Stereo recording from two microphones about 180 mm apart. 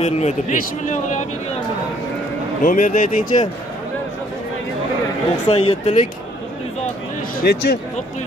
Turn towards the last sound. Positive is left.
turn(degrees=65)  # may be behind; listen again after turning